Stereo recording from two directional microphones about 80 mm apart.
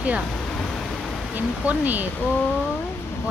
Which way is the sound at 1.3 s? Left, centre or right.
Right.